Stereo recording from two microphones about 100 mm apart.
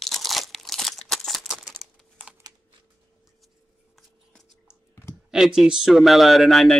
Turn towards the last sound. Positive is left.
turn(degrees=0)  # may be behind; listen again after turning